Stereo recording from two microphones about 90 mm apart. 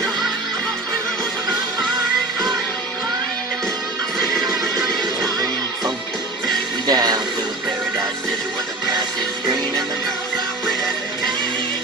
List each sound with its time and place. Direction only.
4.7 s music: 45° right (ahead or behind)
6.9 s music: 45° right (ahead or behind)